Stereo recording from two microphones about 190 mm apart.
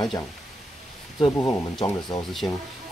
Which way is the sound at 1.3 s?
20° left (ahead or behind).